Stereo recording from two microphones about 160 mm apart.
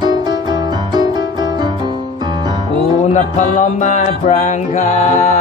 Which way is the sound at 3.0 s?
50° left (ahead or behind).